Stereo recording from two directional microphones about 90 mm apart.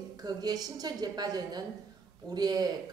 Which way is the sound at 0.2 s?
45° right (ahead or behind).